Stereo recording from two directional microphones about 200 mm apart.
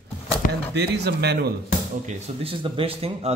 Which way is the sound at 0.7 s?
55° right (ahead or behind).